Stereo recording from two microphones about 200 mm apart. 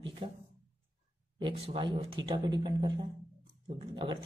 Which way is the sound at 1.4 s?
25° right (ahead or behind).